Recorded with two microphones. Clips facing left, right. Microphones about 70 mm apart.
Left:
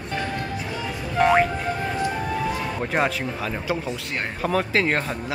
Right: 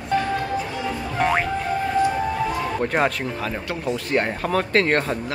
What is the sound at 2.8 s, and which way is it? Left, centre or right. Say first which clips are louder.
Speech: right 2 dB; centre.